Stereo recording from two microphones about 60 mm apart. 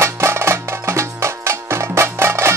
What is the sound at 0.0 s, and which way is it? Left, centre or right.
Music, right.